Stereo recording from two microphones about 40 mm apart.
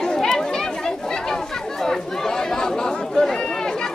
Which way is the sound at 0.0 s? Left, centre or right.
Centre.